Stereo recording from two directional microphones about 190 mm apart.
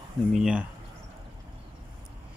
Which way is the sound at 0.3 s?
5° right (ahead or behind).